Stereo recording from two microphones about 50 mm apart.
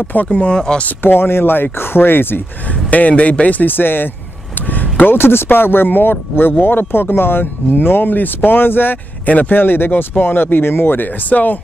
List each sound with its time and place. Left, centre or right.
0.0 s speech: left
0.6 s speech: centre
0.8 s speech: left
2.9 s speech: left
11.2 s speech: left